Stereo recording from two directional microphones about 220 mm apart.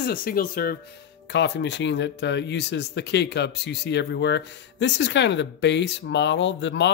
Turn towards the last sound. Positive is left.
turn(degrees=55)  # may be behind; listen again after turning